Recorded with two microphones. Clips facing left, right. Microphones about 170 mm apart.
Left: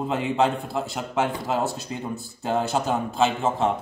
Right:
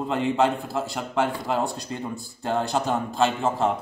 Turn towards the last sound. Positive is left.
turn(degrees=0)  # may be behind; listen again after turning